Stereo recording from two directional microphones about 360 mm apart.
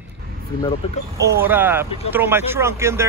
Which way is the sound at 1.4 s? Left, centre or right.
Centre.